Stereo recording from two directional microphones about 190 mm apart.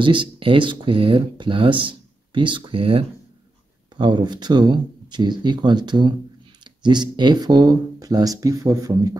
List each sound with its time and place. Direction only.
0.0 s speech: 25° right (ahead or behind)